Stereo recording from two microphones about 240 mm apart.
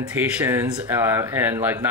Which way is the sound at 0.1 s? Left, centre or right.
Centre.